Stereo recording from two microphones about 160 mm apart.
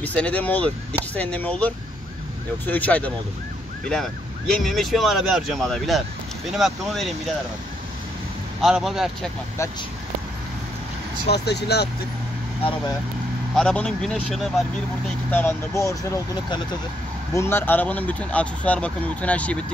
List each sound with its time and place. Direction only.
0.0 s speech: 10° left (ahead or behind)
8.5 s speech: centre (ahead or behind)
11.2 s speech: 90° left
13.6 s speech: 5° left (ahead or behind)
15.3 s speech: 15° left (ahead or behind)